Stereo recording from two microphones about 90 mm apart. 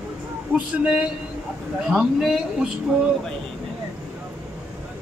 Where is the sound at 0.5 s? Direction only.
10° right (ahead or behind).